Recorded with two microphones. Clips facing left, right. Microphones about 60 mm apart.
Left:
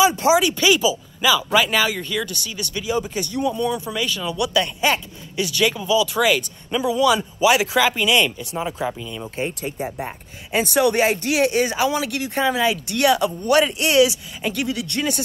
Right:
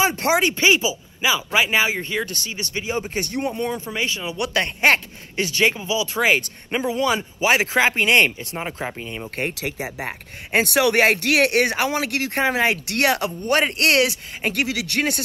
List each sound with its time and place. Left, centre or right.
0.0 s speech: right
3.3 s speech: right
3.9 s a man's voice: right
4.4 s speech: right
5.4 s speech: right
9.5 s speech: right
9.8 s speech: centre
10.0 s speech: right